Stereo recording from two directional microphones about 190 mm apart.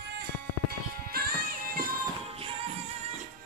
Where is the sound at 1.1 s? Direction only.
50° right (ahead or behind).